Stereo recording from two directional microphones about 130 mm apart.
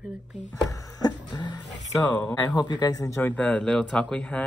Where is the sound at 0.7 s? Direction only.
35° left (ahead or behind).